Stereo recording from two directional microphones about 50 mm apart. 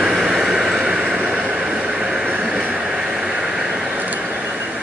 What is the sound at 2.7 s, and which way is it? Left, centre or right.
Vehicle, centre.